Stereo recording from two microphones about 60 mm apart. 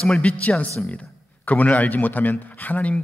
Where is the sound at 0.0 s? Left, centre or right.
Centre.